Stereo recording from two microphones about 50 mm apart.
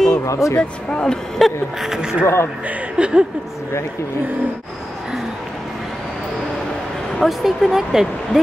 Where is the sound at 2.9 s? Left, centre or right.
Right.